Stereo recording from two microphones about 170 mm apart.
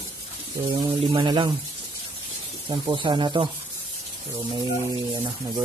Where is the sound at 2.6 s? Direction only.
30° right (ahead or behind).